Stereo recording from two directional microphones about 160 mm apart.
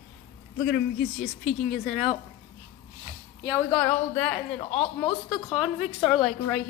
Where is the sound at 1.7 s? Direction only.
60° left (ahead or behind).